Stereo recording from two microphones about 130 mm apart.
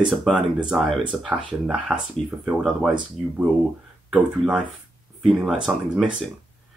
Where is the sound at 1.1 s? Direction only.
10° right (ahead or behind).